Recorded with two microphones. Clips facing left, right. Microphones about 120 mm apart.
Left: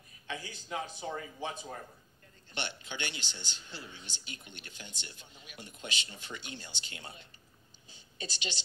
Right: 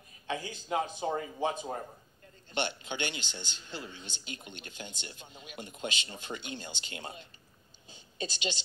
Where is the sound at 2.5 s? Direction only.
15° right (ahead or behind).